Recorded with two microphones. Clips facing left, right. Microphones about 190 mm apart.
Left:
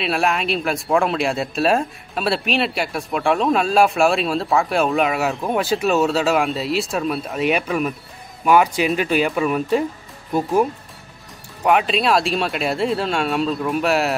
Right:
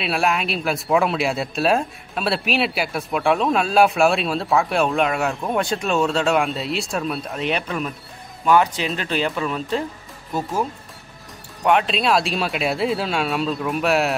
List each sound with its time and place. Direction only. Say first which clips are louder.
0.0 s speech: left 1 dB; centre (ahead or behind); by 10.7 s 15° left (ahead or behind)
11.6 s speech: left 1 dB; centre (ahead or behind)